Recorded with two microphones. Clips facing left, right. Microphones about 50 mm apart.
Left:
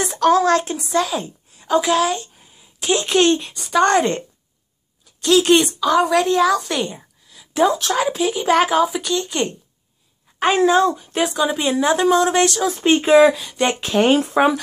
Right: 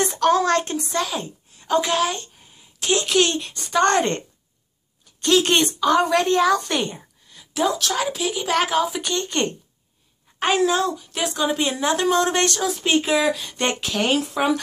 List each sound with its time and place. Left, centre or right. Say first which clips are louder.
0.2 s a sound: left 4 dB; centre
0.9 s speech: left 6 dB; centre
1.6 s a sound: left 3 dB; centre
3.1 s speech: left 7 dB; centre
5.2 s a woman's voice: left 4 dB; centre
7.5 s speech: left 5 dB; centre
10.5 s speech: left 5 dB; centre
11.2 s speech: left 1 dB; centre
12.7 s speech: left 10 dB; left
13.3 s speech: left 4 dB; centre
13.7 s speech: left 8 dB; centre